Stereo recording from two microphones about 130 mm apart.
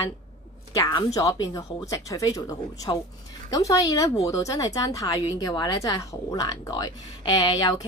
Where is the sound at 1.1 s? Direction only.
25° left (ahead or behind).